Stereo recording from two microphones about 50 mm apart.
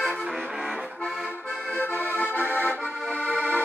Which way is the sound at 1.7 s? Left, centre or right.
Left.